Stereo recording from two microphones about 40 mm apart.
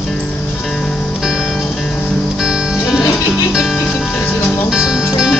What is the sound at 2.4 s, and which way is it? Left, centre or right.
Music, centre.